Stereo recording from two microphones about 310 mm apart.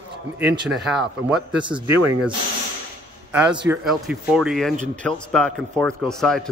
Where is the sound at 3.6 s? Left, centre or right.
Centre.